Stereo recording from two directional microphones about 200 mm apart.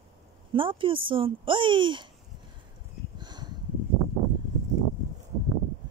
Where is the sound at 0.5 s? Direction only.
25° right (ahead or behind).